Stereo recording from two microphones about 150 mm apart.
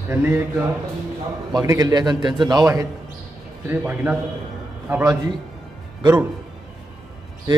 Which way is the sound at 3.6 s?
15° right (ahead or behind).